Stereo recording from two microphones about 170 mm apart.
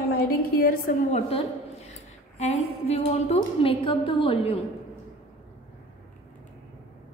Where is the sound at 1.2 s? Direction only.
35° left (ahead or behind).